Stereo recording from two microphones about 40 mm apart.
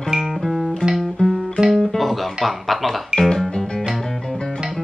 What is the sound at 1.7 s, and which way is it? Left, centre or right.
Music, centre.